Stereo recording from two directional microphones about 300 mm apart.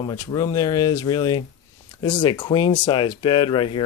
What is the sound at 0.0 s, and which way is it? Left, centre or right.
Speech, centre.